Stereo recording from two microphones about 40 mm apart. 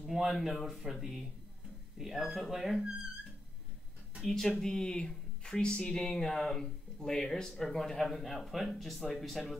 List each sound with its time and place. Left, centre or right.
0.0 s speech: centre
2.0 s speech: centre
4.2 s speech: centre
4.6 s speech: centre